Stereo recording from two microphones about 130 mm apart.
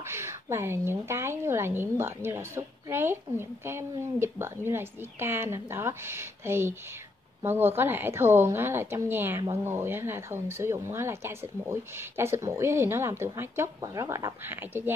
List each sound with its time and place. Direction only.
0.0 s a woman's voice: 20° right (ahead or behind)